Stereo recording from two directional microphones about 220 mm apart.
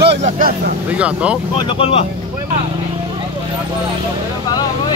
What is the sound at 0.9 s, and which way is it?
Speech, 5° right (ahead or behind).